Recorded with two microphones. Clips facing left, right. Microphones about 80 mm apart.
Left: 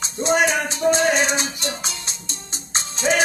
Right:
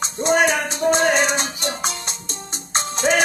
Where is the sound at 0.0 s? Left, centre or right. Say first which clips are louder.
Right 1 dB; right.